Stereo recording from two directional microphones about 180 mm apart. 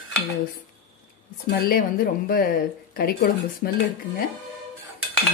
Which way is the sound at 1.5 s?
55° left (ahead or behind).